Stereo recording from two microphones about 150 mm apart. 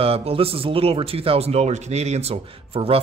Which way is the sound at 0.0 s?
40° right (ahead or behind).